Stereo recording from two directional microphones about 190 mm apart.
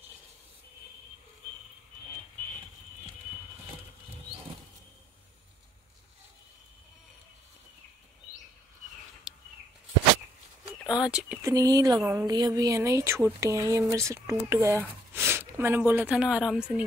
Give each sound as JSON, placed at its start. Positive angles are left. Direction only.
{"t": 9.3, "sound": "a sound", "side_deg": 0}
{"t": 11.0, "sound": "speech", "side_deg": -5}
{"t": 11.4, "sound": "speech", "side_deg": -20}